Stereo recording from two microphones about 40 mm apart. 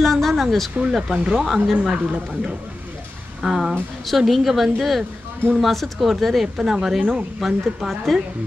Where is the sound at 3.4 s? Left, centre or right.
Centre.